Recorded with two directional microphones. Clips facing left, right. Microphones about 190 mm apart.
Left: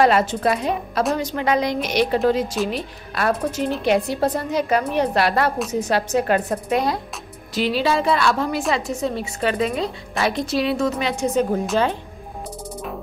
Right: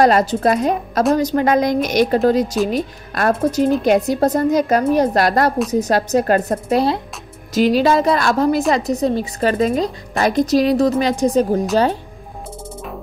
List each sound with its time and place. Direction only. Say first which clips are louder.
0.0 s a woman's voice: right 3 dB; 40° right (ahead or behind)
7.5 s a woman's voice: right 6 dB; 45° right (ahead or behind)